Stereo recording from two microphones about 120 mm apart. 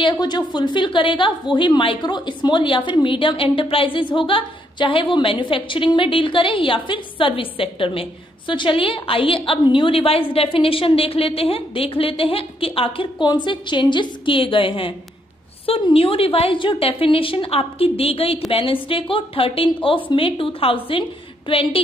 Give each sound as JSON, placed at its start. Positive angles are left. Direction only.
{"t": 0.0, "sound": "a woman's voice", "side_deg": 35}